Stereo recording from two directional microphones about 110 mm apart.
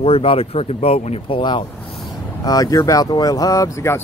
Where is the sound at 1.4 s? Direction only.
45° left (ahead or behind).